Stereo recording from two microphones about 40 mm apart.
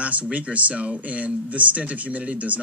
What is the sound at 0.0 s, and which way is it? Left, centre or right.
Speech, right.